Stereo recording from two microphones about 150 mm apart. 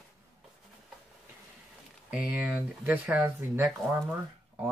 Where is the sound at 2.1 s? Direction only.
10° right (ahead or behind).